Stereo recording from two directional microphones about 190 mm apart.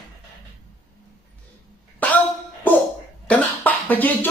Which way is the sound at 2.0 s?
10° left (ahead or behind).